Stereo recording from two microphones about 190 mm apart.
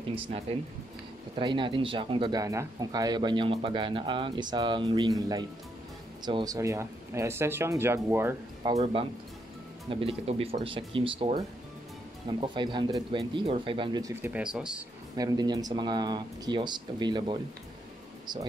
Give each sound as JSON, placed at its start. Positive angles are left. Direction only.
{"t": 0.1, "sound": "speech", "side_deg": -30}
{"t": 9.8, "sound": "speech", "side_deg": -30}
{"t": 14.2, "sound": "speech", "side_deg": -5}
{"t": 15.1, "sound": "speech", "side_deg": -20}